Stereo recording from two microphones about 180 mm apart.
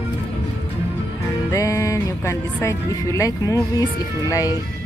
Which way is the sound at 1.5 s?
15° left (ahead or behind).